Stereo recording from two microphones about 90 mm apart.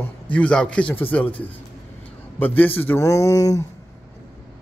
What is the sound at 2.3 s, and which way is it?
Speech, 20° left (ahead or behind).